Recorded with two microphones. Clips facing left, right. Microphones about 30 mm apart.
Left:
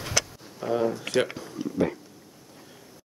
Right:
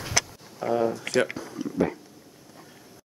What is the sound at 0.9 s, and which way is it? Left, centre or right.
Speech, centre.